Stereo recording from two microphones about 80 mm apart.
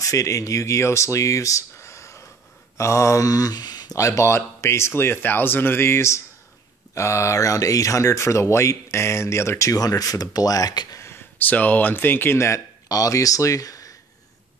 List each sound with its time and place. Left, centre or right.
0.0 s speech: left
2.8 s mantra: left
4.0 s speech: left
11.0 s speech: left
12.8 s speech: left